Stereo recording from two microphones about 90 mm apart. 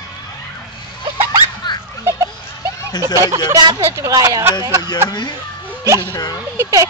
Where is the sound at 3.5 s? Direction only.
55° right (ahead or behind).